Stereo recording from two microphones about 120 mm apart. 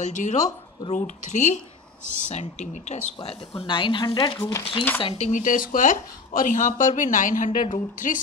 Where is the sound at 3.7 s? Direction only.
45° left (ahead or behind).